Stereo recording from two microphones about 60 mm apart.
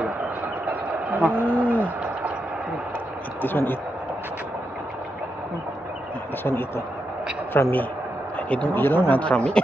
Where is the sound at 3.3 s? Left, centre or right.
Left.